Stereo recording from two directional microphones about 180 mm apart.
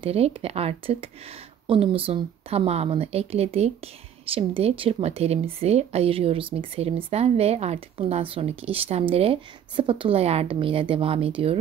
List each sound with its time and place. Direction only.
0.0 s a woman's voice: 35° right (ahead or behind)